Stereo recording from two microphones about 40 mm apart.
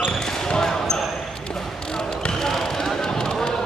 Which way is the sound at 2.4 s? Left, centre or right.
Centre.